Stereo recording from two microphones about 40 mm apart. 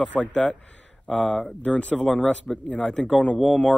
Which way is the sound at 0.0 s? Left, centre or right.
Left.